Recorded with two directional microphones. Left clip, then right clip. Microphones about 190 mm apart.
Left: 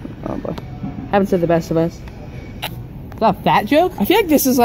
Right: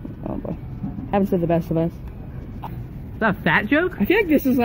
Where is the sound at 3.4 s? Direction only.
25° left (ahead or behind).